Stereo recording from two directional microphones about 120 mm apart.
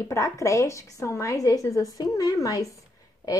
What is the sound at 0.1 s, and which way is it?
A woman's voice, 25° left (ahead or behind).